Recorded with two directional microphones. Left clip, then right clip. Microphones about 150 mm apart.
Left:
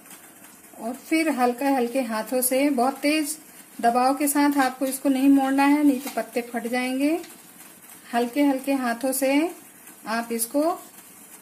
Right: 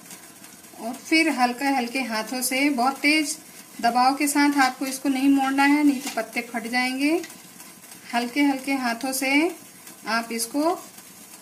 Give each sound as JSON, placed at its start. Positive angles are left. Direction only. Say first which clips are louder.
{"t": 1.1, "sound": "speech", "louder": "right 2 dB", "side_deg": 45}